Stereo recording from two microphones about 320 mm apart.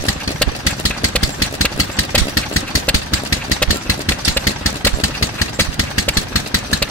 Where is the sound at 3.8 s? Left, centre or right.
Left.